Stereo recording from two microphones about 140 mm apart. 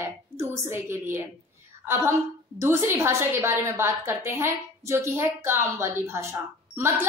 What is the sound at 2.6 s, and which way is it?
A woman's voice, 20° right (ahead or behind).